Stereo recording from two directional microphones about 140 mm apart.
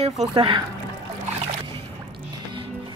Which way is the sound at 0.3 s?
35° right (ahead or behind).